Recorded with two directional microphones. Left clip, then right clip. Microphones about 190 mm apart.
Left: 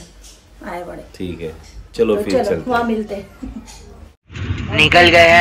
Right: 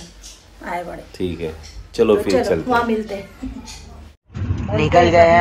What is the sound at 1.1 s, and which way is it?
A man's voice, centre (ahead or behind).